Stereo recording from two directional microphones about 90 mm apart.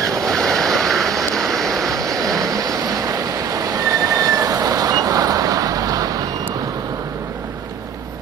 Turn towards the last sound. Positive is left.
turn(degrees=-40)  # may be behind; listen again after turning